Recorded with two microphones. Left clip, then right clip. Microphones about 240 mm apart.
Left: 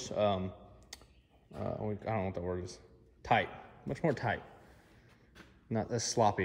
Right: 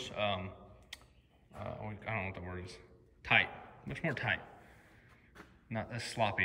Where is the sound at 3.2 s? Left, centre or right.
Centre.